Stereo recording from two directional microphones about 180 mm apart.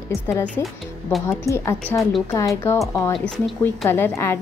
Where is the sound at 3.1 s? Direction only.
Centre (ahead or behind).